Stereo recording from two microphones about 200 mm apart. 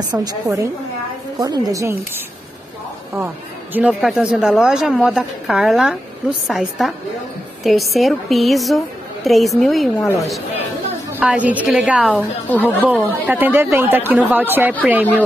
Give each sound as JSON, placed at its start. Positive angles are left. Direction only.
{"t": 0.1, "sound": "speech", "side_deg": -15}
{"t": 3.7, "sound": "a woman's voice", "side_deg": -5}
{"t": 11.1, "sound": "a woman's voice", "side_deg": -5}